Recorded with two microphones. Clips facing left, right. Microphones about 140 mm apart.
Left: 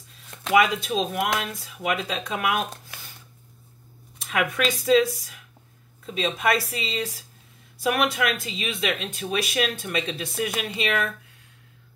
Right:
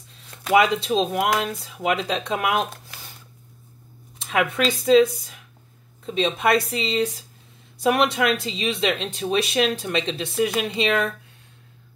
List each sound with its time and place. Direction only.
0.5 s speech: 30° right (ahead or behind)
4.2 s speech: 25° right (ahead or behind)
6.0 s speech: 30° right (ahead or behind)